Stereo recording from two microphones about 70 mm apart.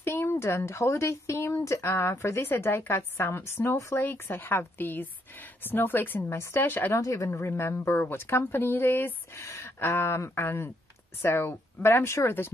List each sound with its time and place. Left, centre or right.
0.0 s speech: left
6.9 s speech: left
7.2 s speech: left
9.4 s speech: left